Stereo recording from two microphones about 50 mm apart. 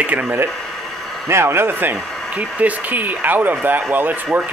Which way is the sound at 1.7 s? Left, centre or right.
Right.